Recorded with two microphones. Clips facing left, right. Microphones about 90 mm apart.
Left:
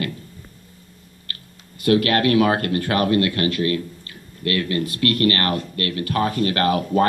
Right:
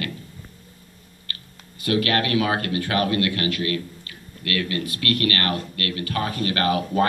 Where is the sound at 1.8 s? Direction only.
45° left (ahead or behind).